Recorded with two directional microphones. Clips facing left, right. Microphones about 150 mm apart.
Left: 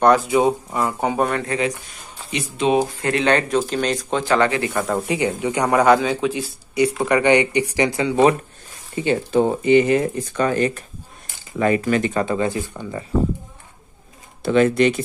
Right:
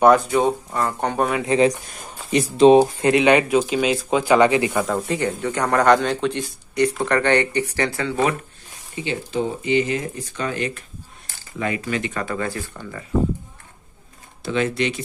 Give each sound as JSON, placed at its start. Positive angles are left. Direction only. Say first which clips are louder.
{"t": 0.0, "sound": "speech", "louder": "even", "side_deg": 0}
{"t": 2.3, "sound": "speech", "louder": "right 7 dB", "side_deg": -35}
{"t": 3.0, "sound": "speech", "louder": "right 3 dB", "side_deg": -20}
{"t": 4.8, "sound": "speech", "louder": "left 2 dB", "side_deg": 10}
{"t": 8.9, "sound": "speech", "louder": "left 7 dB", "side_deg": 50}
{"t": 12.1, "sound": "speech", "louder": "left 5 dB", "side_deg": 25}
{"t": 14.4, "sound": "speech", "louder": "left 6 dB", "side_deg": 50}